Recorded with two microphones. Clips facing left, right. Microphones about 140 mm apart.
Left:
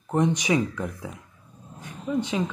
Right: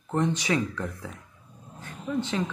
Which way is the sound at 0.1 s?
15° left (ahead or behind).